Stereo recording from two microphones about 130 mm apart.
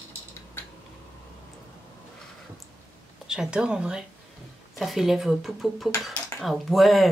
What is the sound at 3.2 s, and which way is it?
Speech, 5° right (ahead or behind).